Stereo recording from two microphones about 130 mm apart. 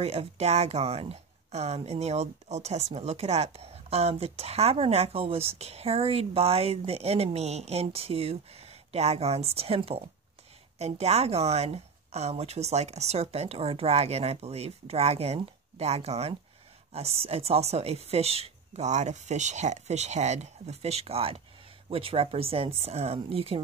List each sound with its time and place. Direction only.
0.0 s speech: 50° right (ahead or behind)